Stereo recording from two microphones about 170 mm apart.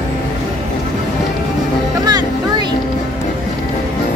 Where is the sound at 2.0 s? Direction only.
25° right (ahead or behind).